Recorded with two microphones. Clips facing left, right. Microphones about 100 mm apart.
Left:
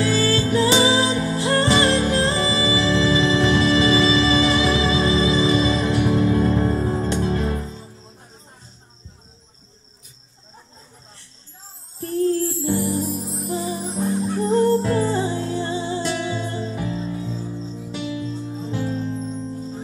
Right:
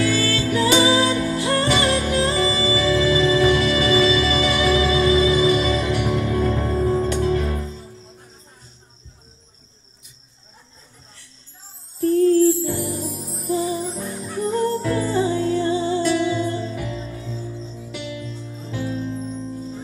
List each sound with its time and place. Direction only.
0.0 s music: 30° left (ahead or behind)
12.0 s music: 30° left (ahead or behind)
13.9 s music: 25° left (ahead or behind)